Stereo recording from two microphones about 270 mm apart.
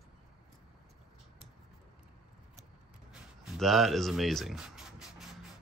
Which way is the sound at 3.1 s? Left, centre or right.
Centre.